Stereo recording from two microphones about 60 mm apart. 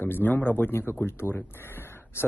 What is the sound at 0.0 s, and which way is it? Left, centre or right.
Speech, left.